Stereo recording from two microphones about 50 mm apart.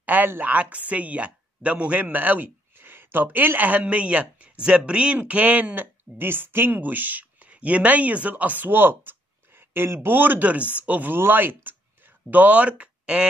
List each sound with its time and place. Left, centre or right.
0.0 s a sound: right
0.4 s speech: right
6.1 s speech: right
9.6 s a sound: right
10.0 s speech: right
12.3 s speech: right